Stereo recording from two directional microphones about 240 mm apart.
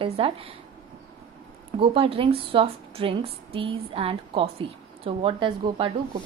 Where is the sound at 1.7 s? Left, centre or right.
Right.